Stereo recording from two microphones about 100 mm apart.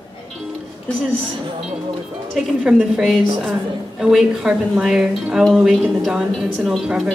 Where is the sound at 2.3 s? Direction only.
5° right (ahead or behind).